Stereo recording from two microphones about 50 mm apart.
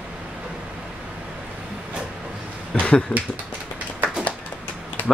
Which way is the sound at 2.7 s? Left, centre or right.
Left.